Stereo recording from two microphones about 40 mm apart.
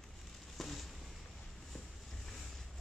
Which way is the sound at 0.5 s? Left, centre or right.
Centre.